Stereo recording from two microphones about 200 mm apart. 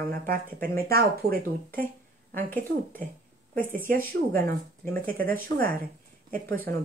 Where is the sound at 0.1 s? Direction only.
45° right (ahead or behind).